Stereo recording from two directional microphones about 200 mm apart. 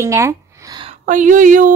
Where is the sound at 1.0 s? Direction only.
40° right (ahead or behind).